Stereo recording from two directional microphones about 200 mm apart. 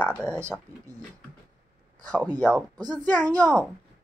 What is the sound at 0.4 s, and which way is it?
Speech, 15° right (ahead or behind).